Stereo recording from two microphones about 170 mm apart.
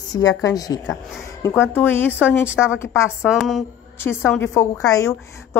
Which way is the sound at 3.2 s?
Centre (ahead or behind).